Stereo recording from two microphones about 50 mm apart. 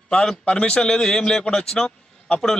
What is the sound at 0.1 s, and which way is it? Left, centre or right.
A man's voice, centre.